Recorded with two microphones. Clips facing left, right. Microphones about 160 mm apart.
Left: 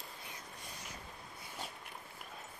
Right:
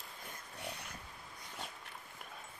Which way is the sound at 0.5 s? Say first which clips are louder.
Right 5 dB; 70° right (ahead or behind).